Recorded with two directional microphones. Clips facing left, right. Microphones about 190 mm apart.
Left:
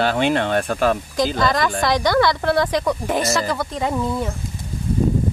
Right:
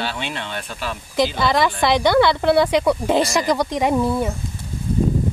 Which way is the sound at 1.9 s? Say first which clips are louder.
Right 3 dB; 15° right (ahead or behind).